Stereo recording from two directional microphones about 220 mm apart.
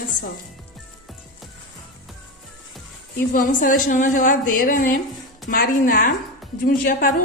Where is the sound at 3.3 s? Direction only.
40° left (ahead or behind).